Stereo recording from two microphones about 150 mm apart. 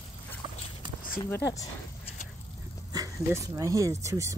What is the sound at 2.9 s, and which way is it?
Speech, 25° right (ahead or behind).